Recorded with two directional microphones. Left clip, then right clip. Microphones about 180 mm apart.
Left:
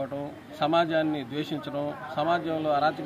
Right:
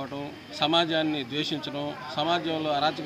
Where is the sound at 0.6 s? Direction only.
15° left (ahead or behind).